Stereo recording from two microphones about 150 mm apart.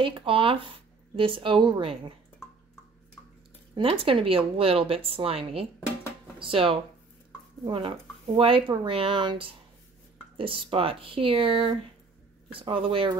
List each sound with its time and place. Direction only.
0.0 s speech: 35° right (ahead or behind)
3.7 s speech: 40° right (ahead or behind)